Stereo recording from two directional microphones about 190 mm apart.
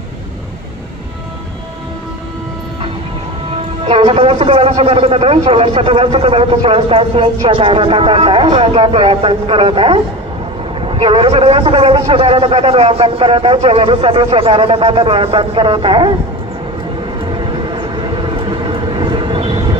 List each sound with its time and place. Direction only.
3.8 s a man's voice: 30° right (ahead or behind)
17.2 s vehicle: 25° right (ahead or behind)